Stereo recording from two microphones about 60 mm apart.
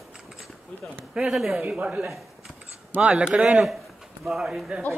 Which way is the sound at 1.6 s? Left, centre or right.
Right.